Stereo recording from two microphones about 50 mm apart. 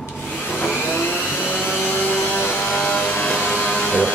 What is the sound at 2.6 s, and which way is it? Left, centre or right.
Vehicle, left.